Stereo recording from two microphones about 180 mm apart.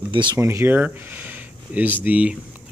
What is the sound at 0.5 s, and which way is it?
Speech, 15° right (ahead or behind).